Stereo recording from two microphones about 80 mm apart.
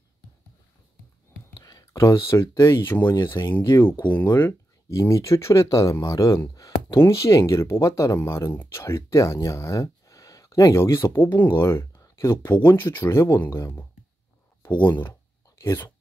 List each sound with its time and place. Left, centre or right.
1.6 s speech: left
4.8 s speech: left
12.0 s a sound: left
12.6 s speech: left